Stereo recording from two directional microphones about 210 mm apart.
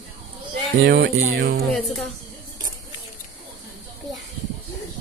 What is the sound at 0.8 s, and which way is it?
Speech, 50° right (ahead or behind).